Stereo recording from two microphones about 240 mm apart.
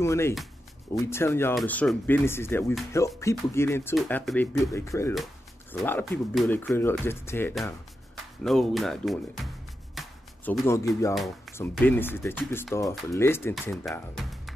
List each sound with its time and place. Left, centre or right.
0.0 s speech: centre
5.1 s speech: centre
9.9 s music: centre
10.7 s speech: centre
11.1 s speech: centre